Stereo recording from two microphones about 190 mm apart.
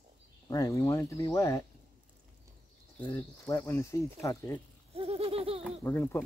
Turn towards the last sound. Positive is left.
turn(degrees=15)  # may be behind; listen again after turning